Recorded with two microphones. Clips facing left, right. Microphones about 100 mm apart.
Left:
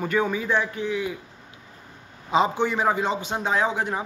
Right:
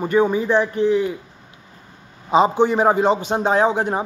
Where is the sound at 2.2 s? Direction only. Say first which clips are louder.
Right 6 dB; 20° right (ahead or behind).